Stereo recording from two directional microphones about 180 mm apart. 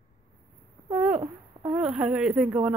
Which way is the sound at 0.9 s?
10° right (ahead or behind).